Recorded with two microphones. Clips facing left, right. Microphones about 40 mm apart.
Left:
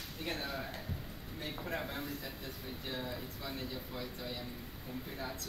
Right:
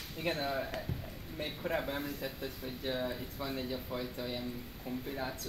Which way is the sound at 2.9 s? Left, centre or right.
Right.